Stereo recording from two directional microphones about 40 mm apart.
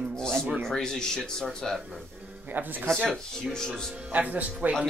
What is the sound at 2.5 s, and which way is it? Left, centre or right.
Speech, right.